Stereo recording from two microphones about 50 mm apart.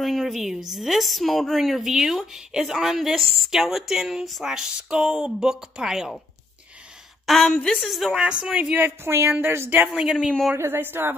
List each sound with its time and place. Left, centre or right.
0.0 s a woman's voice: centre
4.6 s speech: centre
7.2 s a woman's voice: centre
8.2 s speech: right
8.7 s a woman's voice: right
9.9 s speech: centre
10.6 s a woman's voice: right